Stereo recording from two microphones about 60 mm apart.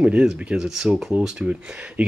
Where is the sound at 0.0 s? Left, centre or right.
Centre.